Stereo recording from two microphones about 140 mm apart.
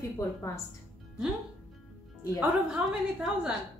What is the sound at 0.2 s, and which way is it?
Speech, 20° left (ahead or behind).